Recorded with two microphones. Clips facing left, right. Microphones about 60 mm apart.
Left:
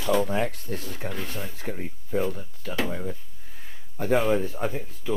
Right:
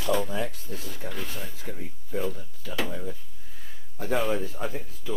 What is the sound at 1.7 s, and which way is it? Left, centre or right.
Speech, left.